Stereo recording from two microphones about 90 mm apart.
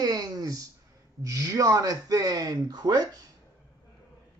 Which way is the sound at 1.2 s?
40° right (ahead or behind).